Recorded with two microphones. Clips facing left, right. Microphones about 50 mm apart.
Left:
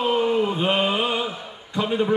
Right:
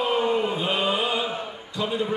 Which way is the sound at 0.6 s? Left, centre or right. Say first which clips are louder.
Left 3 dB; left.